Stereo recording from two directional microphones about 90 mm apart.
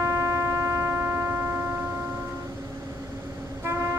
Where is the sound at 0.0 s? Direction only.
35° right (ahead or behind).